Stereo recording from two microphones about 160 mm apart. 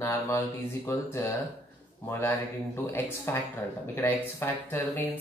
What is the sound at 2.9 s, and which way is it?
Speech, 15° left (ahead or behind).